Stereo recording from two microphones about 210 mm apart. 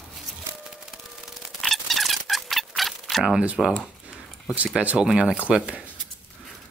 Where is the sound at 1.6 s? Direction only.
Centre (ahead or behind).